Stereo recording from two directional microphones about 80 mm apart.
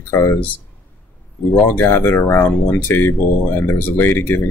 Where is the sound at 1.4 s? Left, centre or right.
Centre.